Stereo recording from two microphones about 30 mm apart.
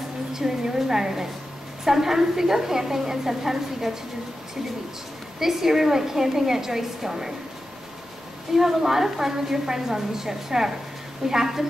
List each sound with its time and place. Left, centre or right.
0.3 s a woman's voice: centre
5.4 s a woman's voice: centre
8.5 s a woman's voice: centre